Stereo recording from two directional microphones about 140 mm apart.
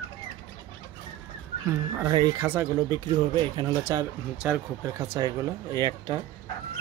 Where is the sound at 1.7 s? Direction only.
20° right (ahead or behind).